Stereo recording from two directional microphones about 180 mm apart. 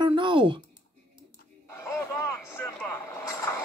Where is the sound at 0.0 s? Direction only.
25° right (ahead or behind).